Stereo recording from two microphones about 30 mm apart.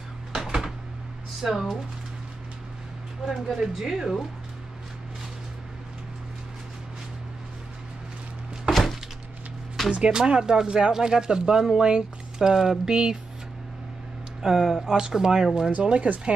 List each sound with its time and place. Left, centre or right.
0.3 s a sound: centre
1.4 s speech: centre
3.5 s speech: centre
8.6 s a sound: centre
9.8 s speech: right
14.4 s speech: centre
15.8 s speech: right